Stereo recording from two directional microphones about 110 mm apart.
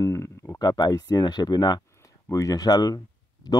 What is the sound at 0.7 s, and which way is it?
Speech, 40° left (ahead or behind).